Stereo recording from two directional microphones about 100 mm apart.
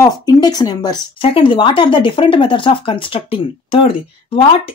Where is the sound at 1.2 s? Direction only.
60° left (ahead or behind).